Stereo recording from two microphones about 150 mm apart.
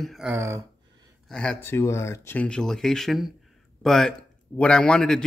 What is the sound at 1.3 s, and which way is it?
A man's voice, 5° left (ahead or behind).